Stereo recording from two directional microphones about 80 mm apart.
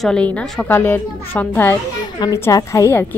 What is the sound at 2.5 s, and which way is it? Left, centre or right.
Speech, left.